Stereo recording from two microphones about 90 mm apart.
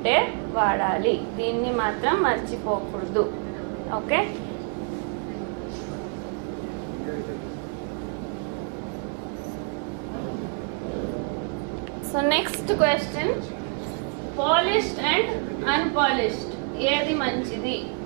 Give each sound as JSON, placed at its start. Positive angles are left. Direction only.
{"t": 0.0, "sound": "a sound", "side_deg": -15}
{"t": 1.8, "sound": "a woman's voice", "side_deg": -20}
{"t": 12.2, "sound": "a woman's voice", "side_deg": -15}
{"t": 14.4, "sound": "a woman's voice", "side_deg": -15}